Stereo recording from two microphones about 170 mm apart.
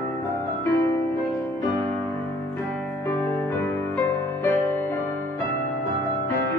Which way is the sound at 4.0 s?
15° left (ahead or behind).